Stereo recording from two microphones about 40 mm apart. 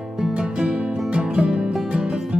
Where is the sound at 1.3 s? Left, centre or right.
Centre.